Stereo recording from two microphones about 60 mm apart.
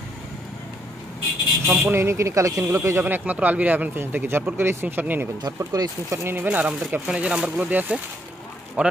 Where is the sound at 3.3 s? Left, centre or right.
Right.